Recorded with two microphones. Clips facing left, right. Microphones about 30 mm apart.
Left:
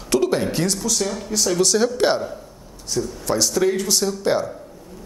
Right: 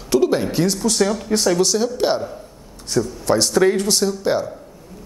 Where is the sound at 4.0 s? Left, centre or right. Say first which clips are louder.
Right 1 dB; centre.